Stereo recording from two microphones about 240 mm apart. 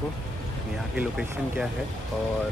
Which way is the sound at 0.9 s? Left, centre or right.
Centre.